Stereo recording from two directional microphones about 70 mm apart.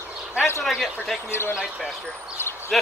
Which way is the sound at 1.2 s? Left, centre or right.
Left.